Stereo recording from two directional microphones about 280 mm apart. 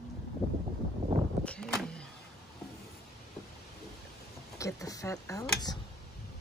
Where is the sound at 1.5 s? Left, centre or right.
Centre.